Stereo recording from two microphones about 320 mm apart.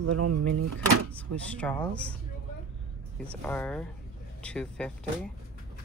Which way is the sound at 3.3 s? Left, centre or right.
Centre.